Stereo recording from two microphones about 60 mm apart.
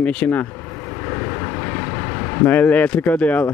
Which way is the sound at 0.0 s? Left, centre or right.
Centre.